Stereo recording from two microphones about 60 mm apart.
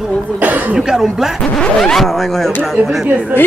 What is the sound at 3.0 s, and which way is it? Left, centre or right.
Speech, right.